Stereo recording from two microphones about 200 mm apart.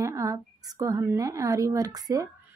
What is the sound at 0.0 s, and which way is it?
A woman's voice, 15° right (ahead or behind).